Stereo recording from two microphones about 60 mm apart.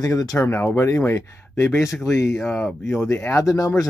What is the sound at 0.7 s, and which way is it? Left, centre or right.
Speech, left.